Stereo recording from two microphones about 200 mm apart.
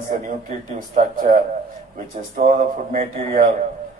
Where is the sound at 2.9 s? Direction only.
35° right (ahead or behind).